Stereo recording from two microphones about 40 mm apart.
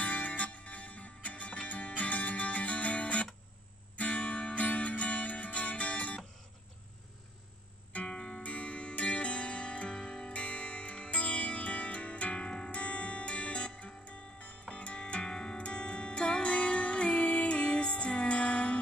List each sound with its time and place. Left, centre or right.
0.0 s music: left
7.9 s music: left
12.7 s music: left